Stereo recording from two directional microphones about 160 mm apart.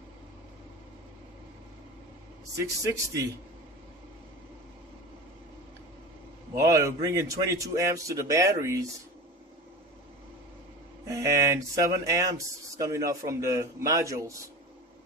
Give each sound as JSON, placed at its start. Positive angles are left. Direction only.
{"t": 2.6, "sound": "speech", "side_deg": -20}
{"t": 6.5, "sound": "speech", "side_deg": -20}
{"t": 11.1, "sound": "speech", "side_deg": -20}